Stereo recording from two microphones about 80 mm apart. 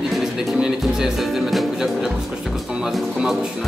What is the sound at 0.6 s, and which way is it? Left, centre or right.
Speech, centre.